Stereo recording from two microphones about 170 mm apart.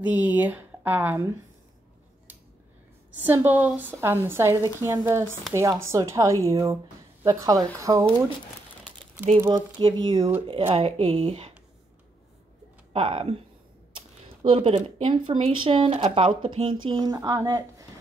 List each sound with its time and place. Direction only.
0.0 s a woman's voice: 10° right (ahead or behind)
3.1 s a woman's voice: 10° right (ahead or behind)
9.4 s a woman's voice: 15° right (ahead or behind)
10.0 s speech: 25° right (ahead or behind)
12.9 s speech: 35° right (ahead or behind)
13.9 s a sound: 30° right (ahead or behind)
15.0 s speech: 30° right (ahead or behind)